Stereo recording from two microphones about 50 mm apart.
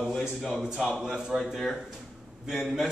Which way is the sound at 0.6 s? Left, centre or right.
Centre.